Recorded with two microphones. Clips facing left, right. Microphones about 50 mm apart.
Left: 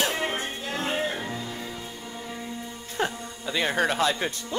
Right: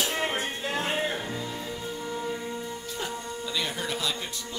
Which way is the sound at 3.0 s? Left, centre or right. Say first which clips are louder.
Left 8 dB; left.